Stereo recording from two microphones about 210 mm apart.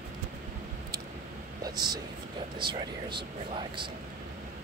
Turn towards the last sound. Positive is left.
turn(degrees=-25)  # may be behind; listen again after turning